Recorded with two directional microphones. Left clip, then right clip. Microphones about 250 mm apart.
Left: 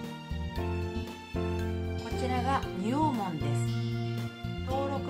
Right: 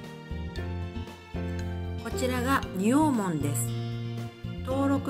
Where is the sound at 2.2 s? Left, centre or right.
Centre.